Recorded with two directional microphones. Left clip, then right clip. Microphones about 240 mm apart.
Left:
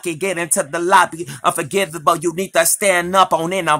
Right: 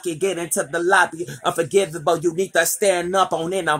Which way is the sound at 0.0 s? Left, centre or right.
Left.